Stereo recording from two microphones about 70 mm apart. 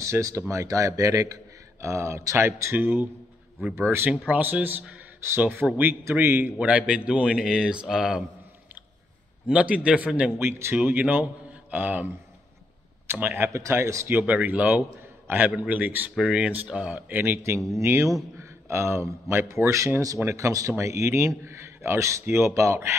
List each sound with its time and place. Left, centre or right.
0.0 s a man's voice: right
6.6 s speech: centre
9.5 s speech: centre
10.4 s speech: right
13.1 s speech: right
13.5 s a man's voice: right
14.0 s speech: right
17.1 s speech: right
18.4 s a man's voice: right